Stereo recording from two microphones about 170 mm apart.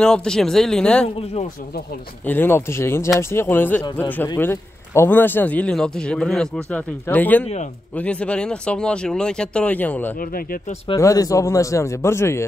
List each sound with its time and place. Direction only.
0.0 s speech: 5° left (ahead or behind)
2.2 s speech: 10° left (ahead or behind)